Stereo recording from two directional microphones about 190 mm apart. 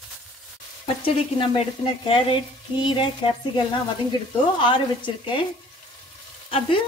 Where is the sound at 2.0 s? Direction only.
25° left (ahead or behind).